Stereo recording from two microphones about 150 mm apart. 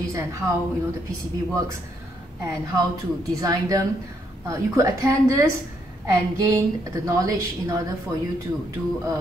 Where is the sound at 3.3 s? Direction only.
25° right (ahead or behind).